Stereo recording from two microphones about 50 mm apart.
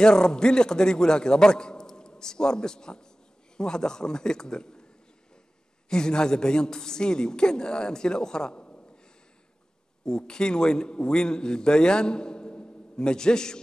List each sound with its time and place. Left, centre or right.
0.0 s a man's voice: centre
5.9 s a man's voice: centre
8.6 s a sound: left
10.0 s a man's voice: centre